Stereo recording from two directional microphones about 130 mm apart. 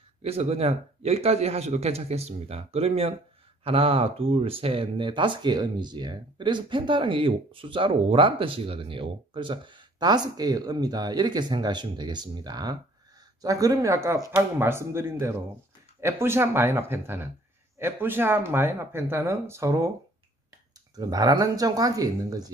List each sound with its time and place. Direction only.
0.2 s a man's voice: 50° right (ahead or behind); by 19.9 s 25° right (ahead or behind)
20.9 s speech: 30° right (ahead or behind)